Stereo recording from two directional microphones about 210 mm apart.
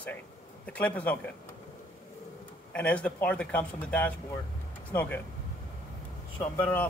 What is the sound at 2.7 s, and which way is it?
Speech, 5° left (ahead or behind).